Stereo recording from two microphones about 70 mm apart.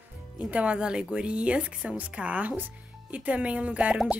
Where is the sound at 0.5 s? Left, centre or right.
Centre.